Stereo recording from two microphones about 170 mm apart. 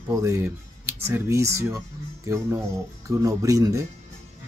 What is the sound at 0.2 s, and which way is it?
Speech, 15° right (ahead or behind).